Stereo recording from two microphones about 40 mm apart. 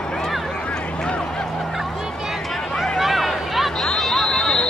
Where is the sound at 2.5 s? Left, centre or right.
Centre.